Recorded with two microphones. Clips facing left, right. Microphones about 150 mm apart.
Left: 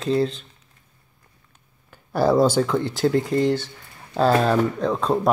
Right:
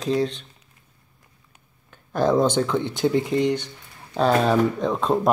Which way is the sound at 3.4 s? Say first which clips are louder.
Left 1 dB; 20° right (ahead or behind).